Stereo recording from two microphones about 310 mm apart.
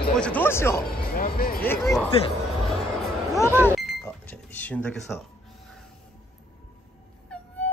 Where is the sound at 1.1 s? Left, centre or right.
Left.